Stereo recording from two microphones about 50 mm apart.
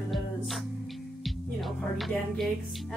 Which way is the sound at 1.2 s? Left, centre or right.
Centre.